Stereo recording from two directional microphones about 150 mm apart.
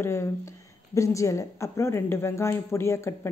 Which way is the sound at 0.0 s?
15° left (ahead or behind).